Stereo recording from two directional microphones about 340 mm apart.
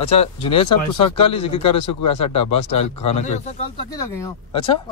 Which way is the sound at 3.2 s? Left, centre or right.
Centre.